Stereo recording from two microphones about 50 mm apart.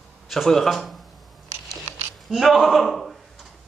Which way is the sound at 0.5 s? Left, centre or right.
Centre.